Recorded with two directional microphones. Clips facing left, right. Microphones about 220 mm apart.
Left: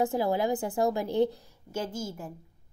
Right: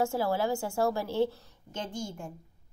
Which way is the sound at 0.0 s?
20° left (ahead or behind).